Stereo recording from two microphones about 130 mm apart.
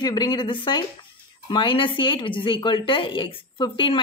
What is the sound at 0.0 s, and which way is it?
Speech, 35° left (ahead or behind).